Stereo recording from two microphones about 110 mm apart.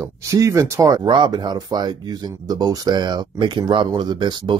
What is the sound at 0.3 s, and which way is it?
Speech, 30° right (ahead or behind).